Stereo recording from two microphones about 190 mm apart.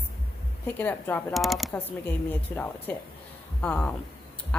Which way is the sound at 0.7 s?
10° left (ahead or behind).